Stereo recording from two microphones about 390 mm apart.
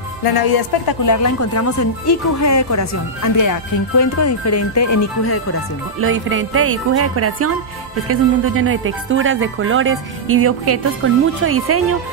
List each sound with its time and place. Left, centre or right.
0.2 s music: left
1.1 s speech: left
5.9 s speech: right